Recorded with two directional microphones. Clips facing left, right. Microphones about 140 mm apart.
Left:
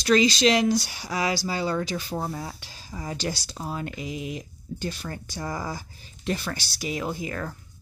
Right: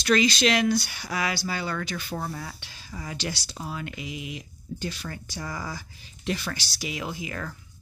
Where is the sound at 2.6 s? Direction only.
40° left (ahead or behind).